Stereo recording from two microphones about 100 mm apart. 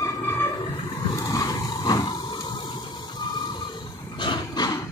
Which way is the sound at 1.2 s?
35° left (ahead or behind).